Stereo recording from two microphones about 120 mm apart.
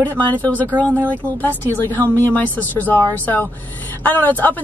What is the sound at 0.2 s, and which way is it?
Speech, 15° left (ahead or behind).